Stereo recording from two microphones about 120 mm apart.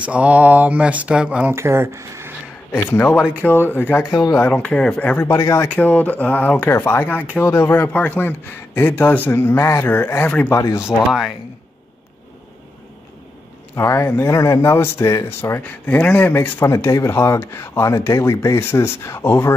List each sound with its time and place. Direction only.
0.0 s speech: 10° right (ahead or behind)
1.5 s speech: 20° right (ahead or behind)
2.7 s speech: 15° left (ahead or behind)
4.1 s speech: 30° left (ahead or behind)
4.5 s speech: 10° left (ahead or behind); by 10.8 s 25° left (ahead or behind)
11.1 s speech: centre (ahead or behind)
13.7 s speech: 20° left (ahead or behind)